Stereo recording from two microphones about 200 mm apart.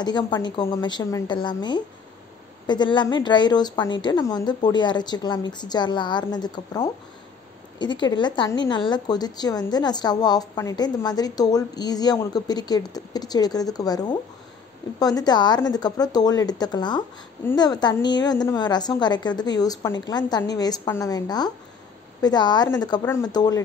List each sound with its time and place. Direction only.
0.0 s a woman's voice: 20° left (ahead or behind)